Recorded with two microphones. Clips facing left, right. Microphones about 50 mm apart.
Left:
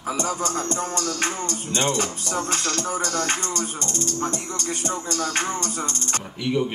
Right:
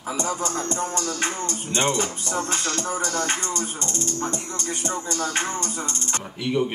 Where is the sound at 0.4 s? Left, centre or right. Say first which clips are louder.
Left 1 dB; right.